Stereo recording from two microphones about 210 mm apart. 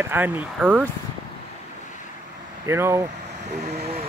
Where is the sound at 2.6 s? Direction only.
15° right (ahead or behind).